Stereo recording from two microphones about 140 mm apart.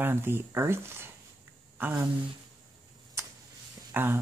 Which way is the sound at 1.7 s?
15° right (ahead or behind).